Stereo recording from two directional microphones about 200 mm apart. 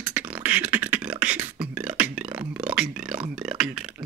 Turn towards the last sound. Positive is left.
turn(degrees=-5)  # may be behind; listen again after turning